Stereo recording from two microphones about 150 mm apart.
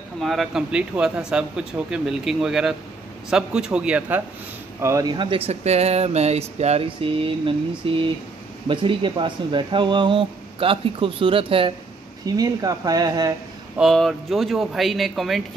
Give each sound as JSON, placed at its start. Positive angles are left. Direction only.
{"t": 0.2, "sound": "a man's voice", "side_deg": 0}
{"t": 4.7, "sound": "speech", "side_deg": -20}
{"t": 12.3, "sound": "speech", "side_deg": -25}
{"t": 13.7, "sound": "speech", "side_deg": 0}